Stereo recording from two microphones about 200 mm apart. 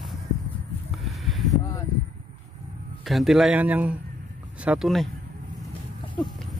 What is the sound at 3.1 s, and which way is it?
Speech, centre (ahead or behind).